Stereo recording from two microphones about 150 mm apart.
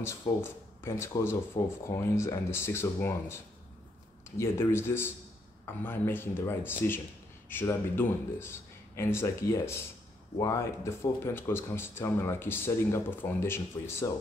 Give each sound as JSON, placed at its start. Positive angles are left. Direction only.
{"t": 0.4, "sound": "speech", "side_deg": 15}
{"t": 4.4, "sound": "speech", "side_deg": 15}